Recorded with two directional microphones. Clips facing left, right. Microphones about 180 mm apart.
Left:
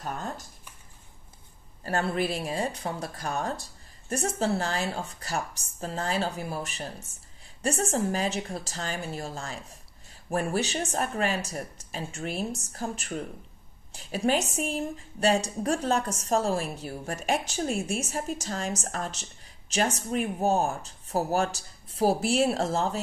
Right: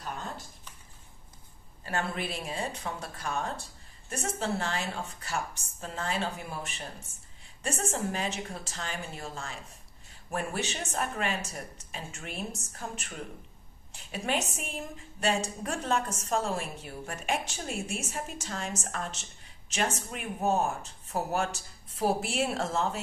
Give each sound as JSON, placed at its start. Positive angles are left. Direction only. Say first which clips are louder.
{"t": 1.8, "sound": "a woman's voice", "louder": "left 6 dB", "side_deg": 40}